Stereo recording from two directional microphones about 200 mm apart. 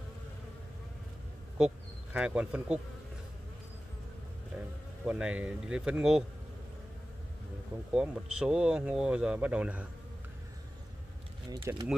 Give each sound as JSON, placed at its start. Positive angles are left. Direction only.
{"t": 2.1, "sound": "speech", "side_deg": -5}
{"t": 5.0, "sound": "speech", "side_deg": -5}
{"t": 7.9, "sound": "speech", "side_deg": -5}
{"t": 11.5, "sound": "speech", "side_deg": -20}